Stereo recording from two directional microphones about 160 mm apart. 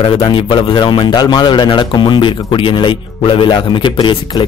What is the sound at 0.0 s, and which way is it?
A man's voice, 35° left (ahead or behind).